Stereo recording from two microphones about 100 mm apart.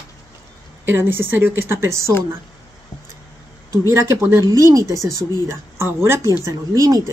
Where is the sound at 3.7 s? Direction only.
30° right (ahead or behind).